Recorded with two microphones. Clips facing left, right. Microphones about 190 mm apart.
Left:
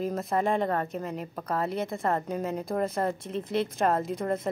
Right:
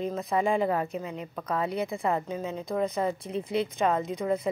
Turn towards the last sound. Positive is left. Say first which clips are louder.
# right 1 dB
turn(degrees=0)  # may be behind; listen again after turning